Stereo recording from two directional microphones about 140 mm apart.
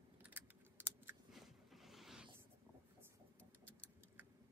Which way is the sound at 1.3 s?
Centre (ahead or behind).